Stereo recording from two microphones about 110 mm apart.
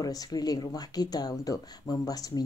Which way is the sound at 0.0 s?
35° left (ahead or behind).